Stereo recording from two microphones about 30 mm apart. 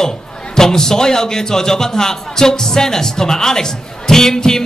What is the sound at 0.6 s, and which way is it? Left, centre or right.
Speech, centre.